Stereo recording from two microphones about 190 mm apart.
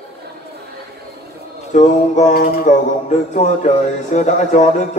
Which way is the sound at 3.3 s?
40° left (ahead or behind).